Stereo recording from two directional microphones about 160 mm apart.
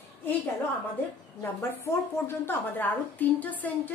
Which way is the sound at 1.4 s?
15° left (ahead or behind).